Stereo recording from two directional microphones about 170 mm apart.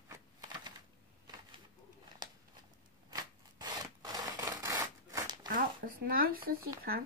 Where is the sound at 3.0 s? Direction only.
25° right (ahead or behind).